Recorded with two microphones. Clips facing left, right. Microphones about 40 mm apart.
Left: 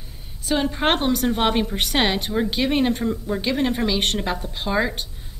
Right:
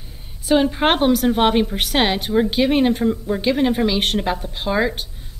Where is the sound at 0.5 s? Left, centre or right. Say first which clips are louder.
Right 4 dB; centre.